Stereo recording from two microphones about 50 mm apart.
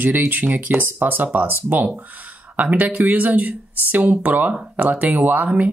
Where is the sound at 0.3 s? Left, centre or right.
Right.